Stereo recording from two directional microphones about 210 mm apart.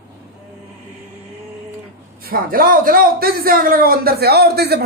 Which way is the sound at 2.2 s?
45° right (ahead or behind).